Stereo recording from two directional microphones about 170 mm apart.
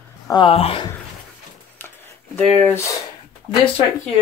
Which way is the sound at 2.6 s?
15° left (ahead or behind).